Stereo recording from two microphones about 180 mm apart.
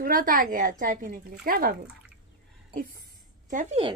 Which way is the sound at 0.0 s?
50° right (ahead or behind).